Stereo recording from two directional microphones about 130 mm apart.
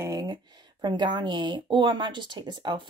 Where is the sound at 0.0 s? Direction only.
25° right (ahead or behind).